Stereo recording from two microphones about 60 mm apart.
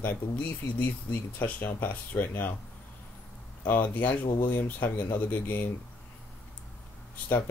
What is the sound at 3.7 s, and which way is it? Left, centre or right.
Speech, left.